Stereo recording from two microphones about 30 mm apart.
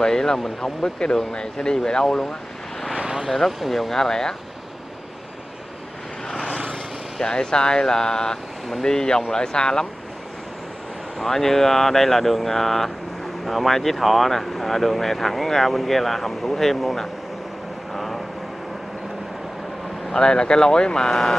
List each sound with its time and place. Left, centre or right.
0.0 s speech: centre
2.0 s speech: centre
3.0 s vehicle: right
3.3 s speech: centre
3.9 s speech: centre
7.2 s speech: left
11.1 s speech: centre
17.9 s vehicle: centre
20.1 s speech: left